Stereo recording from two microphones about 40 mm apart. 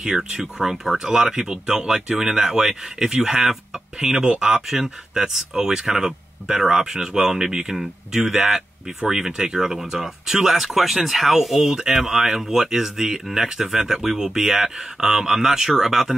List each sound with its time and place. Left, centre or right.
0.0 s speech: centre
4.0 s speech: right